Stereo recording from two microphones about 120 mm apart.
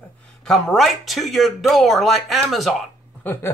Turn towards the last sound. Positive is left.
turn(degrees=15)  # may be behind; listen again after turning